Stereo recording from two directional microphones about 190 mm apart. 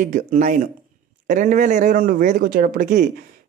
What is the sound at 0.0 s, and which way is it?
Speech, 40° right (ahead or behind).